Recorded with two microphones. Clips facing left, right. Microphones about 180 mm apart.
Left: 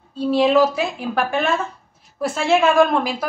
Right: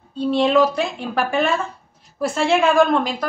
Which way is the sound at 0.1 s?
5° left (ahead or behind).